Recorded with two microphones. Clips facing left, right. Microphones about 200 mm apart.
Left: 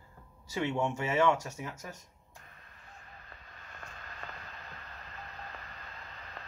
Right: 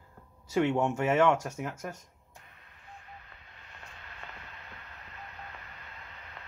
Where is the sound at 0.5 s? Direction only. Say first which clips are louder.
Right 5 dB; 50° right (ahead or behind).